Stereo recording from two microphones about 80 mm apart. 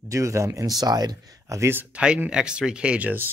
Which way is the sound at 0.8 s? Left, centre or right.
Right.